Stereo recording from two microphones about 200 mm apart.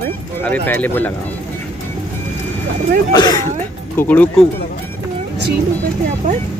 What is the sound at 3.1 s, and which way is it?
Speech, 20° left (ahead or behind).